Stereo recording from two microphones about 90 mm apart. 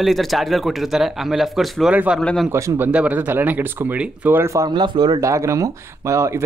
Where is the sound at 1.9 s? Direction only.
15° right (ahead or behind).